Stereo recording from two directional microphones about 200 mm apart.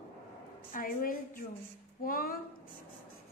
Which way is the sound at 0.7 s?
45° left (ahead or behind).